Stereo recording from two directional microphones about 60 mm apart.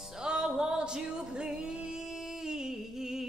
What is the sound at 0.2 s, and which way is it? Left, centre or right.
Music, centre.